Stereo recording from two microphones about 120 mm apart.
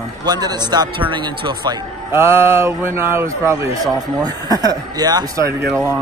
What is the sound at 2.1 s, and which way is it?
A man's voice, 20° right (ahead or behind).